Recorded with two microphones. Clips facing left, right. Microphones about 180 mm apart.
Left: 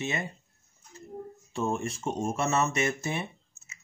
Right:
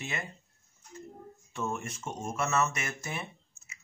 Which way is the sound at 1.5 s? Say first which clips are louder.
Left 5 dB; 30° left (ahead or behind).